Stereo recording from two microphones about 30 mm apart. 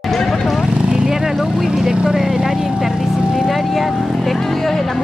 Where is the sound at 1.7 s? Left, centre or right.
Right.